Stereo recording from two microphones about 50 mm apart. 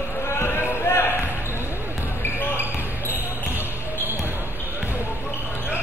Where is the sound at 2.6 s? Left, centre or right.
Right.